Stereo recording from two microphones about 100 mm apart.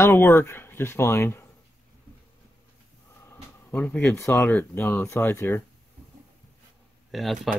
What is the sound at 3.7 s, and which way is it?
Speech, 15° left (ahead or behind).